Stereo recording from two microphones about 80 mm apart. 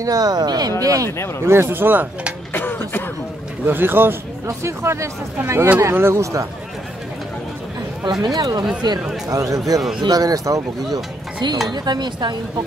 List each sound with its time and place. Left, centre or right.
0.0 s speech: right
1.4 s speech: right
2.5 s throat clearing: left
3.6 s speech: right
8.0 s speech: right
9.3 s speech: right
9.8 s speech: centre
10.0 s speech: right
11.7 s speech: right